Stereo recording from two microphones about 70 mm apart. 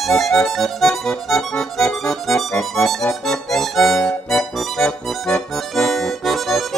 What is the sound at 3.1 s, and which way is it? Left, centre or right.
Accordion, centre.